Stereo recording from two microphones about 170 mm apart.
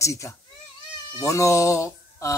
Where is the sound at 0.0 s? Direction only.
15° left (ahead or behind).